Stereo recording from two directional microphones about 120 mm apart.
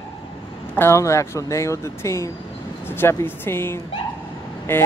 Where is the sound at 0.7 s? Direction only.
25° left (ahead or behind).